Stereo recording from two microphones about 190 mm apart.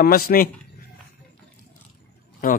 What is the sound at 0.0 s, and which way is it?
Speech, 50° left (ahead or behind).